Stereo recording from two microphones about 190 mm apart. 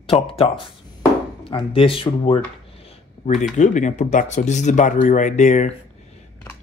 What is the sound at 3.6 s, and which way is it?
Speech, 40° left (ahead or behind).